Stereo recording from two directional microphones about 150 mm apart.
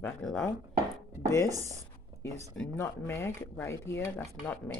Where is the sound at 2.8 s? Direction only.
15° left (ahead or behind).